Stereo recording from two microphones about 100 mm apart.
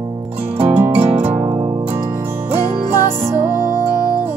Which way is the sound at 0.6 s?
15° right (ahead or behind).